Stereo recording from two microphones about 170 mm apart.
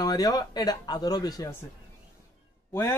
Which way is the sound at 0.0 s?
25° left (ahead or behind).